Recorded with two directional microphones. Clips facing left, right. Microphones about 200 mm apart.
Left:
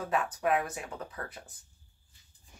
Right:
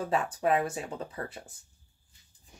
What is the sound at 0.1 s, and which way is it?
Speech, 30° right (ahead or behind).